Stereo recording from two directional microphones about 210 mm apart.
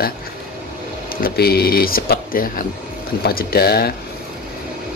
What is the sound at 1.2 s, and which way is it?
Speech, 50° left (ahead or behind).